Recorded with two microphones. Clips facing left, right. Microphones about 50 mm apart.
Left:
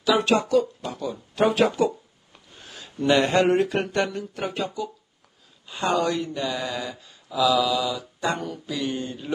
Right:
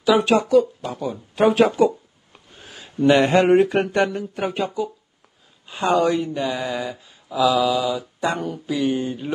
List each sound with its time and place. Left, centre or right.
0.0 s speech: centre
2.6 s a sound: centre
3.3 s speech: centre